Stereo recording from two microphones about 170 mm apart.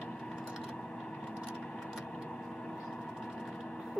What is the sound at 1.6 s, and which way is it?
Vehicle, centre (ahead or behind).